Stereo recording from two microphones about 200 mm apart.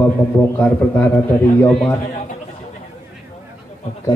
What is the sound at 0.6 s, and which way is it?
A man's voice, 5° left (ahead or behind).